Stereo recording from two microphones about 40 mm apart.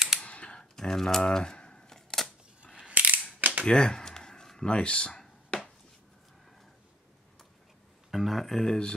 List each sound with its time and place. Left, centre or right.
0.2 s computer keyboard: left
0.6 s camera: centre
2.9 s scissors: right
3.3 s cap gun: right
3.6 s a sound: left
4.6 s speech: left
5.5 s a sound: left
8.1 s speech: centre
8.5 s speech: centre